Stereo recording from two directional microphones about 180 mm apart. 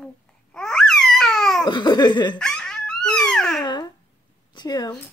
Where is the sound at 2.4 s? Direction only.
5° left (ahead or behind).